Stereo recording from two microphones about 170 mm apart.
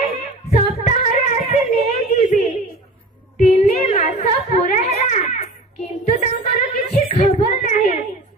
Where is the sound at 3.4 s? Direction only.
40° left (ahead or behind).